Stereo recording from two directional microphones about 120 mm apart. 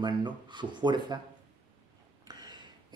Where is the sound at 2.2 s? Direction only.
35° right (ahead or behind).